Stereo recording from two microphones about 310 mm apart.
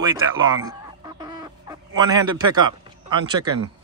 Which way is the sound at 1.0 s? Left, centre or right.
Centre.